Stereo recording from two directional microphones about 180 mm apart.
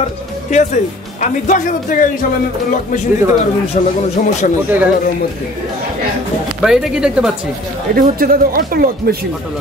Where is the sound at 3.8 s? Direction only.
40° left (ahead or behind).